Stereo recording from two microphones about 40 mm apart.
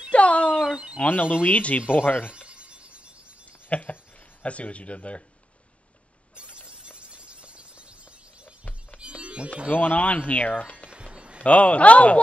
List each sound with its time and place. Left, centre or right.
0.1 s telephone bell ringing: left
0.9 s speech: left
1.8 s speech: left
2.3 s a sound: right
3.6 s speech: left
6.9 s a sound: right
9.0 s music: right
9.7 s speech: left
11.1 s a sound: right
11.4 s speech: left